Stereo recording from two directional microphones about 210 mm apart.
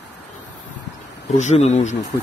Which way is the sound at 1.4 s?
30° left (ahead or behind).